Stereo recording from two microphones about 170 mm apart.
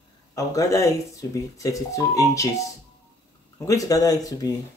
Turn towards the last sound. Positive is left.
turn(degrees=20)  # may be behind; listen again after turning